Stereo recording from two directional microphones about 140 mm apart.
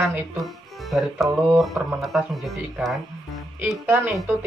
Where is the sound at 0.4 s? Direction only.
Centre (ahead or behind).